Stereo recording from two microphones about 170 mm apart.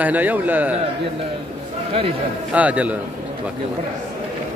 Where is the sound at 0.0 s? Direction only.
10° right (ahead or behind).